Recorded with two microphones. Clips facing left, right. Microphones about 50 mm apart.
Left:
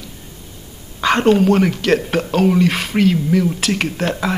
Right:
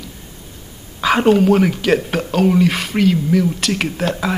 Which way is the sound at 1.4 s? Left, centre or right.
Centre.